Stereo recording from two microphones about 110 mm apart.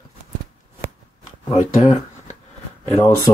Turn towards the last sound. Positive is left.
turn(degrees=25)  # may be behind; listen again after turning